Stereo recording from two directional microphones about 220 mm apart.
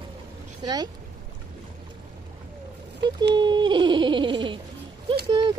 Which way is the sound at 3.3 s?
20° right (ahead or behind).